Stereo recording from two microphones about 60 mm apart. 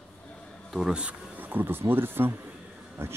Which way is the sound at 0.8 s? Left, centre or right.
Centre.